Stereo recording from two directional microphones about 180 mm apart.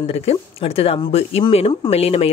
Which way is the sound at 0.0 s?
35° left (ahead or behind).